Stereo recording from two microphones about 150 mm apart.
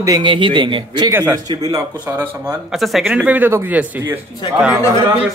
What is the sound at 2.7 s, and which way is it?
Speech, centre (ahead or behind).